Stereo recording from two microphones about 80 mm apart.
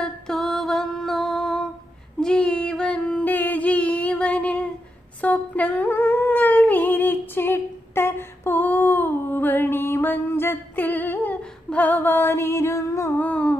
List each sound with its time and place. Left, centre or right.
0.0 s music: centre
2.1 s female singing: centre
3.3 s music: left
5.2 s humming: centre; by 13.1 s left
13.2 s a sound: centre